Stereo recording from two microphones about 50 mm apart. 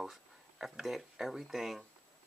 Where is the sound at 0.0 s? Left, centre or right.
Centre.